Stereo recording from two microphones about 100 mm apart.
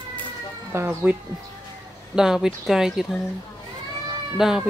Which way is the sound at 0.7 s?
20° right (ahead or behind).